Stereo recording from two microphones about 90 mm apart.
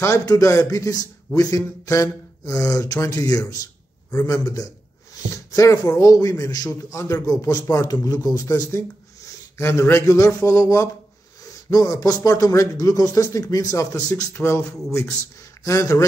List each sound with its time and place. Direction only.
0.0 s a man's voice: 35° left (ahead or behind)
14.3 s a man's voice: 30° left (ahead or behind)